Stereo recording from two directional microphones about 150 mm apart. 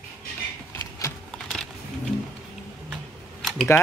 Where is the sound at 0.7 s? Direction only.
20° left (ahead or behind).